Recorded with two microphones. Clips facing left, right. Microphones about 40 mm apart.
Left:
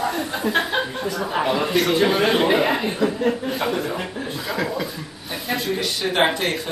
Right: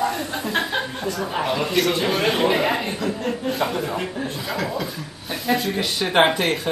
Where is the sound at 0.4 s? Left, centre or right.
Centre.